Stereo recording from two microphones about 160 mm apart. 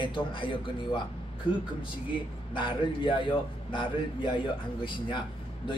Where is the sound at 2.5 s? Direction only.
30° left (ahead or behind).